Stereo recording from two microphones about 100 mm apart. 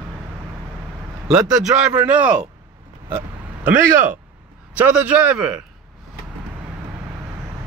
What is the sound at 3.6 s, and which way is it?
A man's voice, 20° right (ahead or behind).